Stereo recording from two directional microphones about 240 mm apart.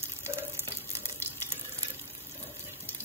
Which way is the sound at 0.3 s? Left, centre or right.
Centre.